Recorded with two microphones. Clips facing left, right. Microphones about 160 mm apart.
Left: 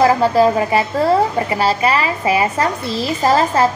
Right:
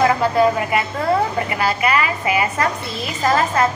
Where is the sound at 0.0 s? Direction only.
30° left (ahead or behind).